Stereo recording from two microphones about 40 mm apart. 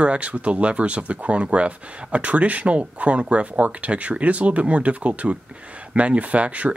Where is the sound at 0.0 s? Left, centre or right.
Right.